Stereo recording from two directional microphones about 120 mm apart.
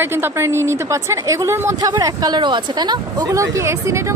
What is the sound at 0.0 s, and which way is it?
A woman's voice, 20° right (ahead or behind).